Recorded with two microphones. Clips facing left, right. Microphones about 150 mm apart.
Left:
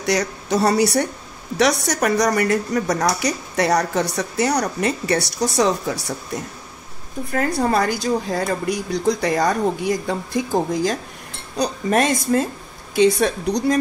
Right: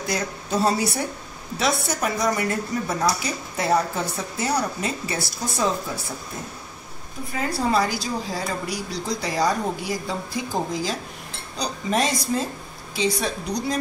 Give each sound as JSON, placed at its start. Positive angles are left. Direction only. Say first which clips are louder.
{"t": 0.0, "sound": "speech", "louder": "left 6 dB", "side_deg": 80}
{"t": 7.3, "sound": "a woman's voice", "louder": "left 3 dB", "side_deg": 50}